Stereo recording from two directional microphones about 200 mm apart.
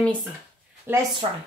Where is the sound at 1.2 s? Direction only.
25° right (ahead or behind).